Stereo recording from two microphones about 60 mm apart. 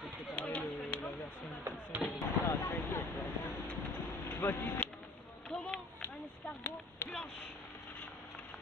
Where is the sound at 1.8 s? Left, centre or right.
Right.